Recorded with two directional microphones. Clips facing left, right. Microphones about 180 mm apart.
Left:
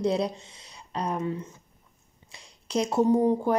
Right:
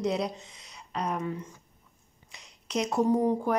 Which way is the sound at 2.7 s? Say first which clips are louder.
Left 3 dB; 30° left (ahead or behind).